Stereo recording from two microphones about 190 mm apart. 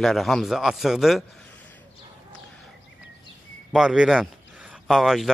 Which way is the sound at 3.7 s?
Centre (ahead or behind).